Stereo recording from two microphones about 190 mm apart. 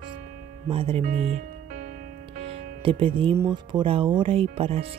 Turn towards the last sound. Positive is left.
turn(degrees=-30)  # may be behind; listen again after turning